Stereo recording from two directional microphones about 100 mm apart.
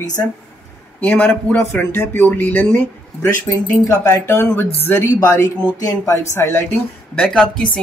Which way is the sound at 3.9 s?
30° left (ahead or behind).